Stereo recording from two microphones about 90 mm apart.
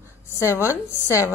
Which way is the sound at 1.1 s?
35° left (ahead or behind).